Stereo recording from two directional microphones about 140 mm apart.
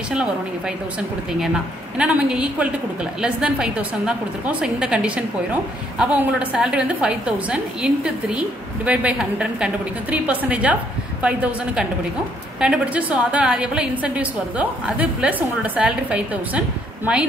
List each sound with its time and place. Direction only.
2.0 s a woman's voice: 5° right (ahead or behind)